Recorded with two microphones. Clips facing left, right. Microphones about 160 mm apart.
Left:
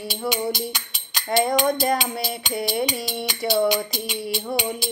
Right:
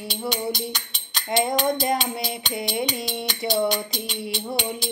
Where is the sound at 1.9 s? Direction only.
5° left (ahead or behind).